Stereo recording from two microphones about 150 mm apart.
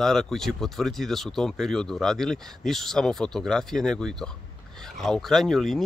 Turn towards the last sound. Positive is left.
turn(degrees=0)  # may be behind; listen again after turning